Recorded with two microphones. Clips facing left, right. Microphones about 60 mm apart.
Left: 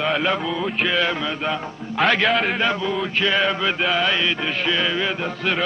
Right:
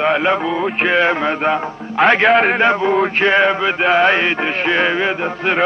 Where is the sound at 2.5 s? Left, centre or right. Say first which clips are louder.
Right 8 dB; right.